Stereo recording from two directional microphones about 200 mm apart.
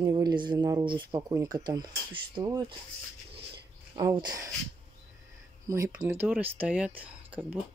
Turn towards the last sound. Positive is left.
turn(degrees=-5)  # may be behind; listen again after turning